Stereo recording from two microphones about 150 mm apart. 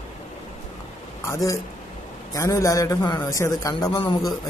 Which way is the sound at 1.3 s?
20° left (ahead or behind).